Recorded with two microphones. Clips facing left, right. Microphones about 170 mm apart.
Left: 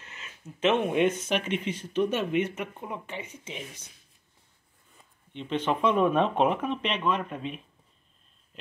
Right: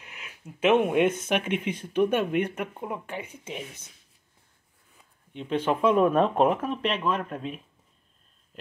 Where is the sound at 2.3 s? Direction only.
55° right (ahead or behind).